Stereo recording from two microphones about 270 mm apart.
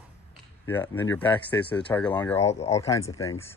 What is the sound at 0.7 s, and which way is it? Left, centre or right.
Speech, centre.